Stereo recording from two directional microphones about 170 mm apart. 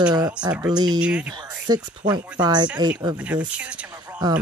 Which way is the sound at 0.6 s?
25° right (ahead or behind).